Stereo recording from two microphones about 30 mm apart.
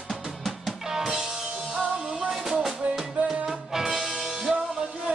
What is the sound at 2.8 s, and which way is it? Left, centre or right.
Music, right.